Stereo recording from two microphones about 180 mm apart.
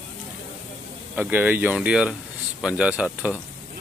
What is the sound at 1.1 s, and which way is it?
Speech, 10° right (ahead or behind).